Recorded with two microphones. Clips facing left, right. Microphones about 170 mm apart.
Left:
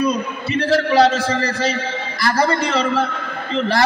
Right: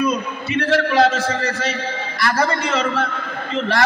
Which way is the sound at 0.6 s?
35° left (ahead or behind).